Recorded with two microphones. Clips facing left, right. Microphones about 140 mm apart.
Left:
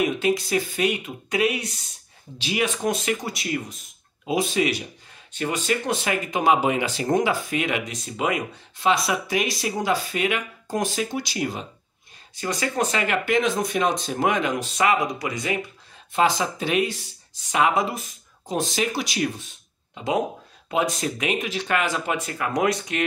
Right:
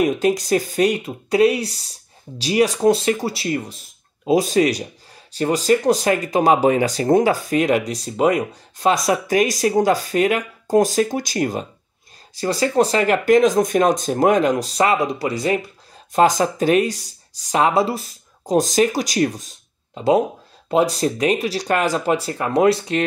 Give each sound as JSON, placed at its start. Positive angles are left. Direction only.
{"t": 0.0, "sound": "speech", "side_deg": -40}
{"t": 12.4, "sound": "speech", "side_deg": -35}